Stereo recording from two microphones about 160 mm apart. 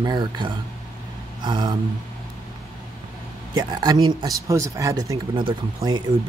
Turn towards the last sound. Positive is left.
turn(degrees=-30)  # may be behind; listen again after turning